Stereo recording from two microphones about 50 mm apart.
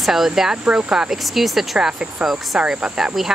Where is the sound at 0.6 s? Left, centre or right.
Right.